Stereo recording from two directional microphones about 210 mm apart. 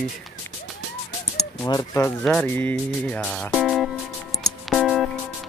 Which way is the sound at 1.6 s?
15° left (ahead or behind).